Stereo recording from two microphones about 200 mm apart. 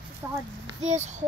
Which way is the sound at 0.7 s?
35° right (ahead or behind).